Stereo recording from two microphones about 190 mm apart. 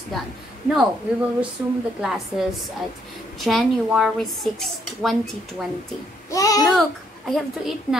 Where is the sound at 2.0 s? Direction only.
5° right (ahead or behind).